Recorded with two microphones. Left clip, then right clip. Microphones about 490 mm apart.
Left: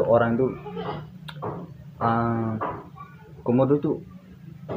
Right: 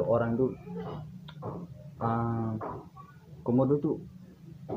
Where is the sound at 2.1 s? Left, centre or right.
Right.